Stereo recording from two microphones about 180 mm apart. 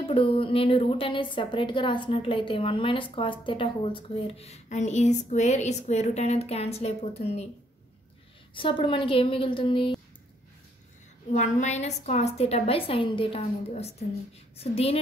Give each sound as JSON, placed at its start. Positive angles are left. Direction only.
{"t": 0.0, "sound": "a woman's voice", "side_deg": 30}
{"t": 8.5, "sound": "a woman's voice", "side_deg": 30}
{"t": 11.3, "sound": "a woman's voice", "side_deg": 40}